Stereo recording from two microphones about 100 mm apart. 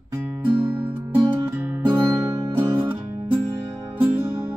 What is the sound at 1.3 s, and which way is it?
Music, 20° right (ahead or behind).